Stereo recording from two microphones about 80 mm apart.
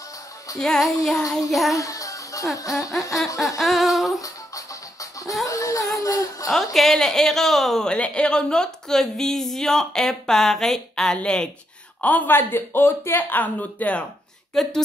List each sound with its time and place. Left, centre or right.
0.6 s speech: centre
1.8 s music: left
3.5 s speech: centre
5.4 s a sound: left
6.5 s speech: centre
14.5 s speech: centre